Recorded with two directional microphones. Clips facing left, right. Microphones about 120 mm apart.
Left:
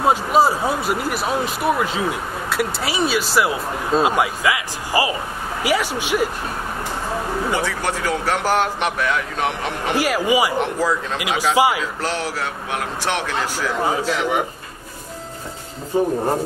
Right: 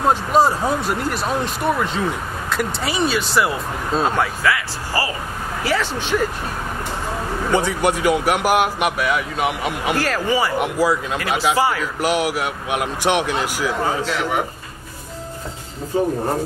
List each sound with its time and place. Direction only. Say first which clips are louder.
0.0 s speech: even; 5° left (ahead or behind)
4.1 s speech: even; 15° left (ahead or behind)
7.5 s speech: right 4 dB; 15° right (ahead or behind)
9.9 s speech: left 4 dB; 10° left (ahead or behind)
10.6 s speech: right 2 dB; 10° right (ahead or behind)
11.1 s speech: left 4 dB; 15° left (ahead or behind)
12.0 s speech: right 4 dB; 15° right (ahead or behind)
13.8 s speech: left 1 dB; 15° left (ahead or behind)